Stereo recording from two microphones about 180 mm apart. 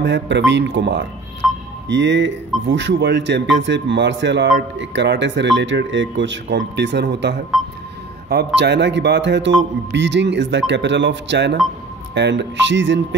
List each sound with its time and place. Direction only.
0.0 s speech: 75° right (ahead or behind)
1.4 s music: centre (ahead or behind)
1.9 s speech: 90° right; by 7.4 s 70° right (ahead or behind)
8.5 s speech: 75° right (ahead or behind); by 13.0 s 90° right